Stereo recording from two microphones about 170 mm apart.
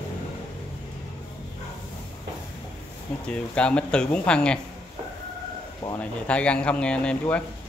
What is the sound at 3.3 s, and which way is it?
Speech, 5° left (ahead or behind).